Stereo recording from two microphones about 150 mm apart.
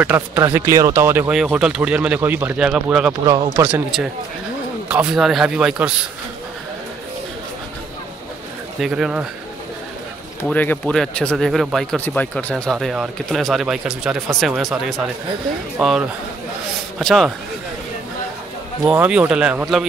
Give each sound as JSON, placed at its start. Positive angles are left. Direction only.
{"t": 0.0, "sound": "a man's voice", "side_deg": -10}
{"t": 8.8, "sound": "speech", "side_deg": -5}
{"t": 10.4, "sound": "speech", "side_deg": 10}
{"t": 12.1, "sound": "speech", "side_deg": 10}
{"t": 18.9, "sound": "a man's voice", "side_deg": -10}